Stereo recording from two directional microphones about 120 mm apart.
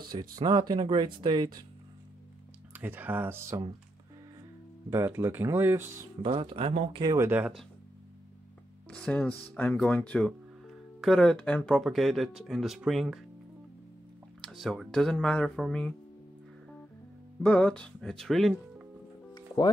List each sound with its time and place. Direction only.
0.1 s speech: 40° right (ahead or behind)
2.7 s speech: 15° right (ahead or behind)
4.8 s speech: 20° right (ahead or behind)
6.2 s speech: 45° right (ahead or behind)
7.2 s speech: 15° right (ahead or behind)
8.9 s speech: 10° left (ahead or behind)
14.4 s speech: centre (ahead or behind)
17.4 s speech: 10° left (ahead or behind)
19.3 s music: 35° left (ahead or behind)